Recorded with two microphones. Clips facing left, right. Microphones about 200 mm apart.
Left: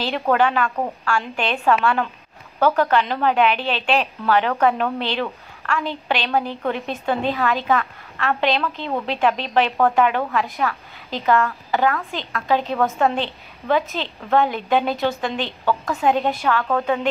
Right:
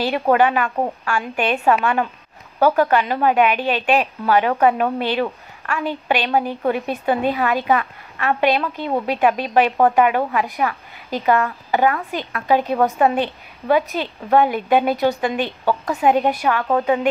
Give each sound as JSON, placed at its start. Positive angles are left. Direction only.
{"t": 0.0, "sound": "a woman's voice", "side_deg": -15}